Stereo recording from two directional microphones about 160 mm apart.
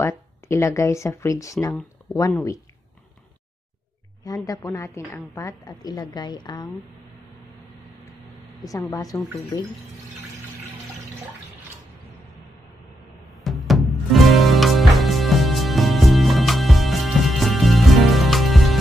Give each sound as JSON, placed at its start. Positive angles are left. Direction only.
{"t": 0.0, "sound": "a woman's voice", "side_deg": 15}
{"t": 4.3, "sound": "a woman's voice", "side_deg": 20}
{"t": 8.6, "sound": "a woman's voice", "side_deg": 20}
{"t": 13.3, "sound": "music", "side_deg": 0}